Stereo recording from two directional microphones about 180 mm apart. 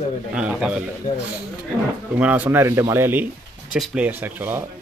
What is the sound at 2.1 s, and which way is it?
Speech, 10° right (ahead or behind).